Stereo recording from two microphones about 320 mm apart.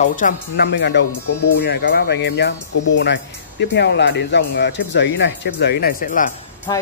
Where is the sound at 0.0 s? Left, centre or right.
Left.